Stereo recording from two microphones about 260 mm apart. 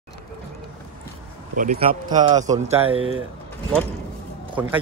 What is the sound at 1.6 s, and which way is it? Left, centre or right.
Speech, right.